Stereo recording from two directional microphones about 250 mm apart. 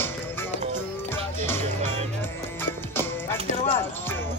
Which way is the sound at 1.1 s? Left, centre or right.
Centre.